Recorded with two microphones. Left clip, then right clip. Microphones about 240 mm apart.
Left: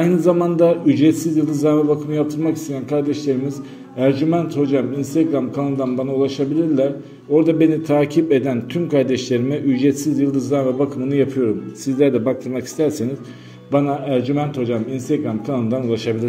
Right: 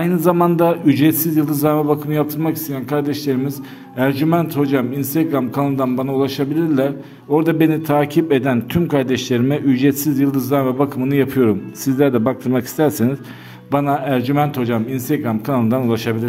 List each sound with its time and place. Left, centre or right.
0.0 s a man's voice: right